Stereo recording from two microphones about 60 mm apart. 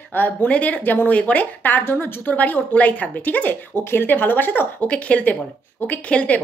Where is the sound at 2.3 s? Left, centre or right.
Left.